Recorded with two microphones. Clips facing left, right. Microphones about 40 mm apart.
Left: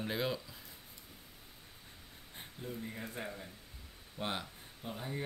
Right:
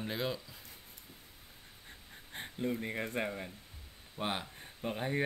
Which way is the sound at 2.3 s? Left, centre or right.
Right.